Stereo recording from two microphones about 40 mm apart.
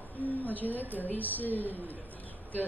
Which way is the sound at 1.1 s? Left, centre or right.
Left.